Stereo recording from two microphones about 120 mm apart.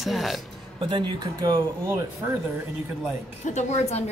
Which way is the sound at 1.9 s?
20° right (ahead or behind).